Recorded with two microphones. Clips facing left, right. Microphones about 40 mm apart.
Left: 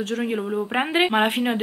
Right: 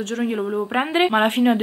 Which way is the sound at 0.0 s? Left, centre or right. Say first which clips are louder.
Right 2 dB; centre.